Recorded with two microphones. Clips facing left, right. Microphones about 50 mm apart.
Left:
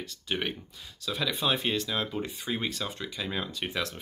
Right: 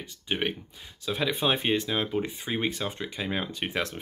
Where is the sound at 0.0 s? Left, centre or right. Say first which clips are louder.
Right 2 dB; right.